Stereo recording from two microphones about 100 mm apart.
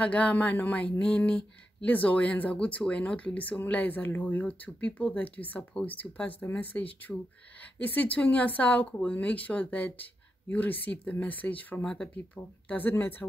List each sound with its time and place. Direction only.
0.0 s speech: 15° left (ahead or behind)